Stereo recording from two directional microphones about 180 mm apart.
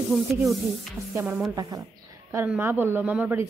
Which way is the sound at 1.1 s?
10° right (ahead or behind).